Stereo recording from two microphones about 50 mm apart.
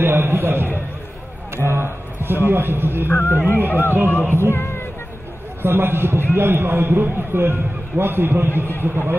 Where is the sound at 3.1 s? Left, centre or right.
Left.